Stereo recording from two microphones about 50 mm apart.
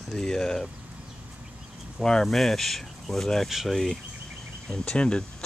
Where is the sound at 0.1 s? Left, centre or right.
Centre.